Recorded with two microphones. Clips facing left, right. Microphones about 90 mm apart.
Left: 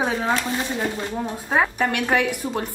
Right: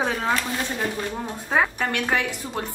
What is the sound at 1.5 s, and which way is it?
Speech, 10° left (ahead or behind).